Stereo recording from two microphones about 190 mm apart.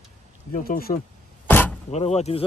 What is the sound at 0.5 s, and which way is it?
Speech, 45° left (ahead or behind).